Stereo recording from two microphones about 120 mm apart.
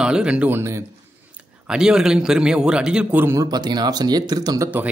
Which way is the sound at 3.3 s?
35° right (ahead or behind).